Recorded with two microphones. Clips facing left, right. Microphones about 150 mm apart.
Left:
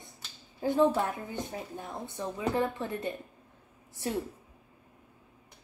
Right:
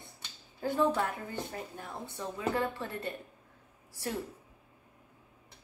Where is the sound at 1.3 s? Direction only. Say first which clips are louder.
Left 2 dB; 20° left (ahead or behind).